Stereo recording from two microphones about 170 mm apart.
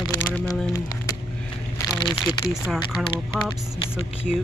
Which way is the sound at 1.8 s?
15° left (ahead or behind).